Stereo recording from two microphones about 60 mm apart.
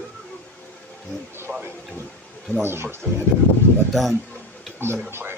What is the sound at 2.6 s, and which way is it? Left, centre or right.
Speech, right.